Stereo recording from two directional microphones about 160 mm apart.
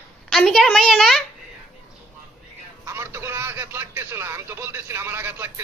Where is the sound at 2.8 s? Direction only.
15° right (ahead or behind).